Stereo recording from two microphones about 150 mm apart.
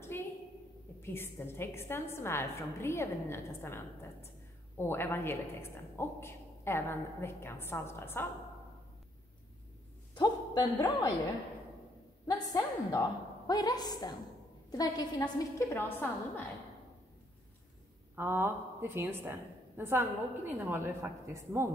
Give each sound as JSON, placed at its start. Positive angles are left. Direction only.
{"t": 1.0, "sound": "a woman's voice", "side_deg": 15}
{"t": 10.1, "sound": "a sound", "side_deg": 30}
{"t": 12.3, "sound": "a woman's voice", "side_deg": 25}
{"t": 18.1, "sound": "a woman's voice", "side_deg": -15}